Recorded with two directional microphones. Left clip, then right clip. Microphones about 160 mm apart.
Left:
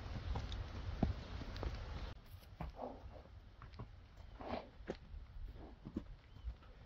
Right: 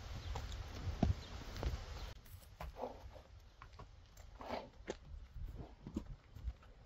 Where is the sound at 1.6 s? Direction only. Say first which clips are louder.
Right 2 dB; 15° right (ahead or behind).